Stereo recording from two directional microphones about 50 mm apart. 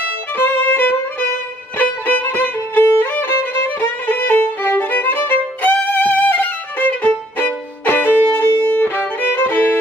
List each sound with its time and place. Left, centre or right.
0.4 s violin: left
1.8 s music: left
3.6 s violin: left